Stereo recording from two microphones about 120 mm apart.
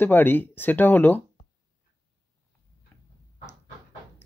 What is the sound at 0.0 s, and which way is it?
Speech, 15° left (ahead or behind).